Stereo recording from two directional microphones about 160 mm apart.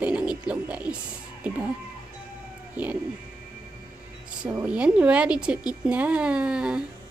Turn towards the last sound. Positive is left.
turn(degrees=-5)  # may be behind; listen again after turning